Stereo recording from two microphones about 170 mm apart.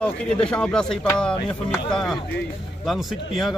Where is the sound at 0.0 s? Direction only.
5° left (ahead or behind).